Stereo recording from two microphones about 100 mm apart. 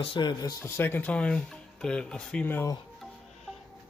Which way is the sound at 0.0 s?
55° left (ahead or behind).